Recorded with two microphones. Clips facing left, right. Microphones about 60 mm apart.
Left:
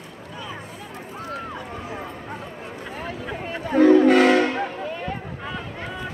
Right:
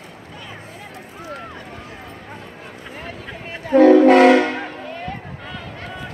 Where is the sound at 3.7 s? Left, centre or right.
Right.